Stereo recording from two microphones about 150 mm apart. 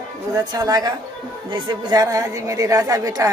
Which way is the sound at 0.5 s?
25° right (ahead or behind).